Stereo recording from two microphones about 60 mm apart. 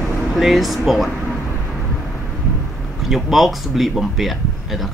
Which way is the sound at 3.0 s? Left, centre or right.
Centre.